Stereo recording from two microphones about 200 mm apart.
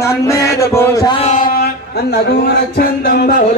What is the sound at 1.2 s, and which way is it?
Speech, 35° left (ahead or behind).